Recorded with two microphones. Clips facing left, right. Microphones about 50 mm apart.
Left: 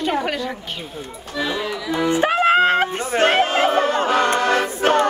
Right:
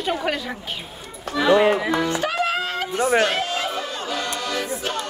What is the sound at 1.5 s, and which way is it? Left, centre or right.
Music, right.